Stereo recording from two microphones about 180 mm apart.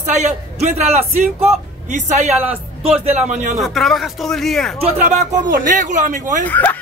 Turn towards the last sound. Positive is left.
turn(degrees=10)  # may be behind; listen again after turning